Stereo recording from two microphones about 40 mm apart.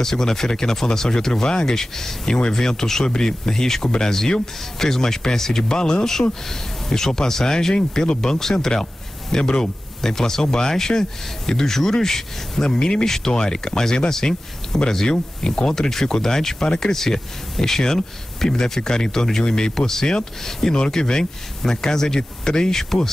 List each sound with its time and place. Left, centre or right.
0.0 s speech: centre
16.5 s speech: left
16.8 s speech: centre